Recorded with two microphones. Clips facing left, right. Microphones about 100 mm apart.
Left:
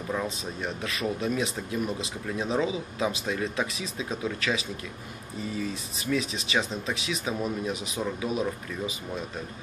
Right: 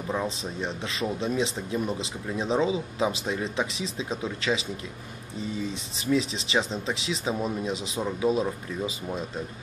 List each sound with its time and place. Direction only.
0.6 s speech: 25° right (ahead or behind)